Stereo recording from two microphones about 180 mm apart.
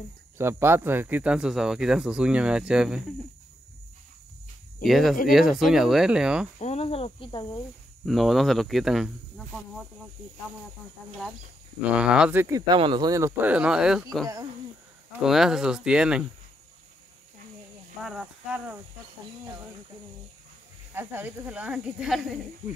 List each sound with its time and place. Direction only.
0.4 s speech: 15° right (ahead or behind)
4.8 s speech: centre (ahead or behind)
6.6 s speech: 35° left (ahead or behind)
8.0 s speech: centre (ahead or behind)
11.9 s speech: 5° right (ahead or behind)
15.2 s speech: centre (ahead or behind)
18.0 s speech: 5° right (ahead or behind)
20.9 s speech: 10° right (ahead or behind)